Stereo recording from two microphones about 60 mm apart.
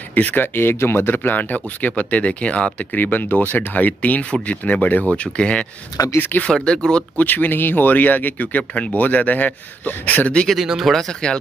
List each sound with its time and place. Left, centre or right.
0.1 s speech: left
0.6 s speech: left; by 5.7 s centre
6.1 s speech: left
6.4 s speech: centre
7.2 s speech: left
10.6 s speech: centre